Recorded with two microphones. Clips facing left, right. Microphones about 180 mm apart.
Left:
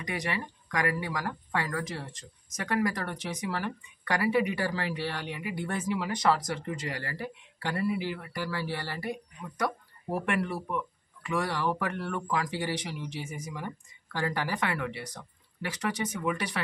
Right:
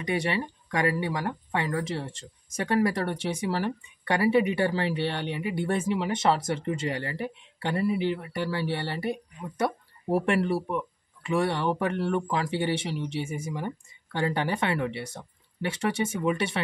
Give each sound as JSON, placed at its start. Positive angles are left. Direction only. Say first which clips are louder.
{"t": 0.0, "sound": "speech", "louder": "right 6 dB", "side_deg": -25}